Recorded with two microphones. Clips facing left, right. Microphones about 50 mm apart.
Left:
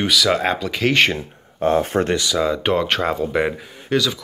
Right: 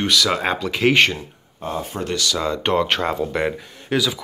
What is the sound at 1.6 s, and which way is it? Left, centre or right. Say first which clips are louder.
Speech: left 9 dB; left.